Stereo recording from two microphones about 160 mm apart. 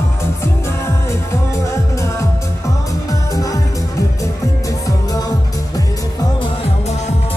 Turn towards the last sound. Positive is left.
turn(degrees=45)  # may be behind; listen again after turning